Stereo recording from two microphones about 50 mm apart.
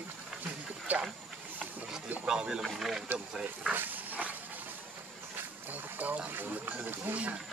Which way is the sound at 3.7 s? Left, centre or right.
Right.